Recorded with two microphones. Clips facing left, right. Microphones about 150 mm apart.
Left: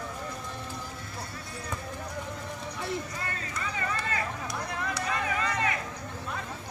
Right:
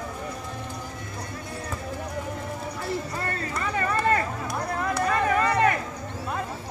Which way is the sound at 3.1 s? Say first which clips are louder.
Right 6 dB; 60° right (ahead or behind).